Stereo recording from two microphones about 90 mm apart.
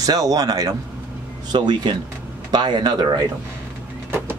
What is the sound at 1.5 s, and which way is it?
Speech, 55° right (ahead or behind).